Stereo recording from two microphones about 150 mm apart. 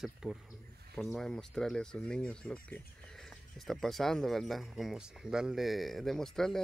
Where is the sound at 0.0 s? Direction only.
5° right (ahead or behind).